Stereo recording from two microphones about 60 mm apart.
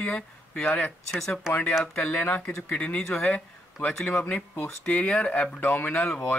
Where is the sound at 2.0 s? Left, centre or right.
Centre.